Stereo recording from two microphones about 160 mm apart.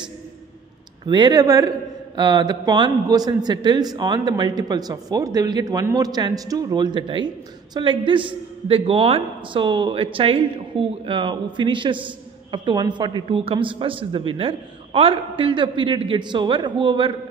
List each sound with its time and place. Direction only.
1.0 s a man's voice: 30° right (ahead or behind)